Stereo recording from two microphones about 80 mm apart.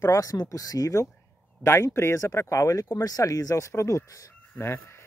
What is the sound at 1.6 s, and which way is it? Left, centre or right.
Speech, left.